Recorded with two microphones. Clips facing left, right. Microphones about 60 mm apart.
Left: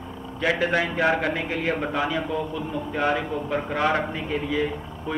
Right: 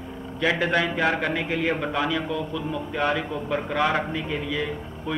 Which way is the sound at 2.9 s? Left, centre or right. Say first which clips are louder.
Left 1 dB; centre.